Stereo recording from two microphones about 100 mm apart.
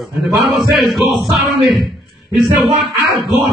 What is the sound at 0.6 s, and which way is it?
Speech, centre (ahead or behind).